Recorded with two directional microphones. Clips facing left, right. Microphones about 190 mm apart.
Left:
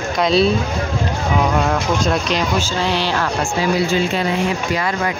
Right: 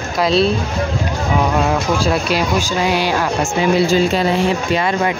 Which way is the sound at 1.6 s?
5° right (ahead or behind).